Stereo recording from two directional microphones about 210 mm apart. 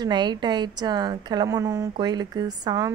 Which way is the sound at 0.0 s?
20° right (ahead or behind).